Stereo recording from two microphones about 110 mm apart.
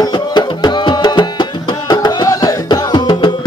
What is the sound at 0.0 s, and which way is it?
Music, 40° left (ahead or behind).